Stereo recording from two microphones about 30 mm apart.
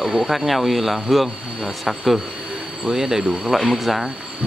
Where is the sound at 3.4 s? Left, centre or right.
Centre.